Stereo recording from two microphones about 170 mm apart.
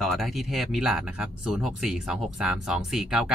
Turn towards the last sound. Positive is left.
turn(degrees=-5)  # may be behind; listen again after turning